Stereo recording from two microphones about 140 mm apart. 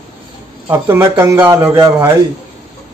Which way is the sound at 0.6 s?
20° right (ahead or behind).